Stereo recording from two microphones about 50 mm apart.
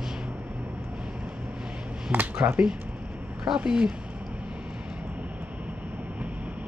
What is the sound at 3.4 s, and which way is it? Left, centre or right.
Speech, centre.